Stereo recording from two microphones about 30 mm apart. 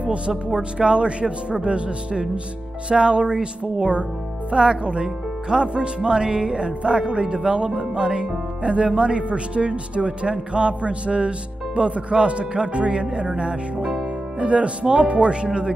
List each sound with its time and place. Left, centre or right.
0.6 s speech: right
3.3 s speech: centre
4.5 s speech: right
14.4 s speech: right